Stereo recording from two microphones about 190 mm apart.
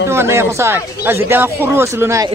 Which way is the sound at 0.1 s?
15° right (ahead or behind).